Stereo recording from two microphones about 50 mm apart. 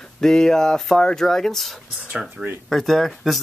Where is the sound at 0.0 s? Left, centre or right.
Centre.